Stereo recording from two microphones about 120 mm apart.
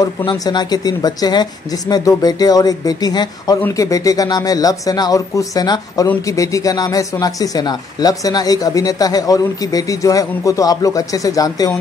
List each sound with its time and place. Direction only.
0.0 s speech: 40° left (ahead or behind)